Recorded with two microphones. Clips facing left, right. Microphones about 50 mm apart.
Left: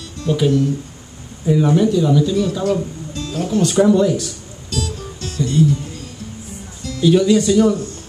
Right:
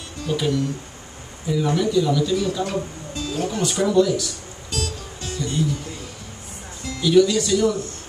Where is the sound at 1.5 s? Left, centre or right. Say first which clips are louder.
Left 5 dB; left.